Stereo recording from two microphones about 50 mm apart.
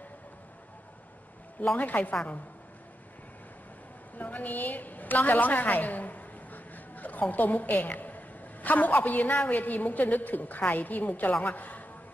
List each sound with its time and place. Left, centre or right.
1.8 s a woman's voice: left
4.2 s a woman's voice: left